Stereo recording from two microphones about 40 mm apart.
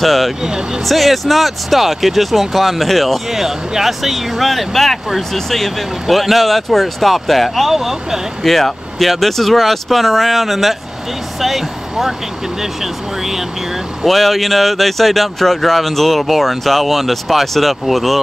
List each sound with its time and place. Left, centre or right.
0.0 s speech: centre
0.4 s speech: centre
0.8 s speech: centre
3.3 s speech: centre
8.4 s speech: centre
14.0 s speech: centre